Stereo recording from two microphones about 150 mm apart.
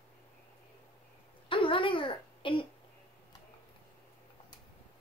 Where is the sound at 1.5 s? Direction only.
35° left (ahead or behind).